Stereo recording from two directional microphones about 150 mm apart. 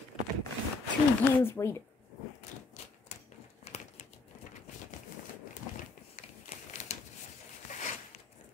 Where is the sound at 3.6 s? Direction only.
45° left (ahead or behind).